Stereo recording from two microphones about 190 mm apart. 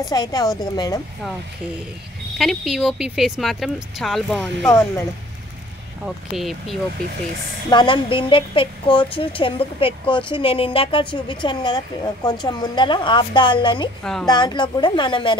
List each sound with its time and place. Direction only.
0.1 s a woman's voice: 20° left (ahead or behind)
2.3 s speech: centre (ahead or behind)
4.6 s speech: 15° left (ahead or behind)
6.0 s speech: centre (ahead or behind)
7.7 s a woman's voice: 25° left (ahead or behind)